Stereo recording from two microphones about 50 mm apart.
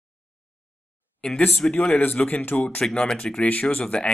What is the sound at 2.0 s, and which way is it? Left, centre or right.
Speech, left.